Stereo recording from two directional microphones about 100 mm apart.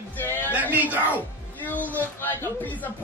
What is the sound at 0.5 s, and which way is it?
Cat, 15° right (ahead or behind).